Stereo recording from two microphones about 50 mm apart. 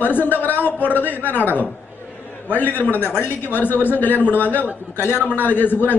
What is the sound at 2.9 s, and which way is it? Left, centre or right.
Speech, right.